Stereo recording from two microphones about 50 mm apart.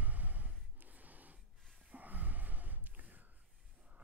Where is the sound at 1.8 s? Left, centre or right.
Right.